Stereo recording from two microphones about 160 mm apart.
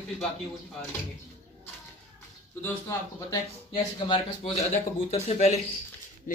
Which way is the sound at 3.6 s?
30° left (ahead or behind).